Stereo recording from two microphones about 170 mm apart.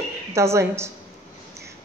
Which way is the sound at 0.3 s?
15° right (ahead or behind).